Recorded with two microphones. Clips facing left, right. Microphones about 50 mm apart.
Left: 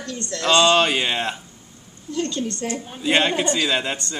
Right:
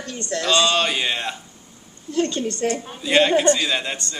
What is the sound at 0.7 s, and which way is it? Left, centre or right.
Speech, centre.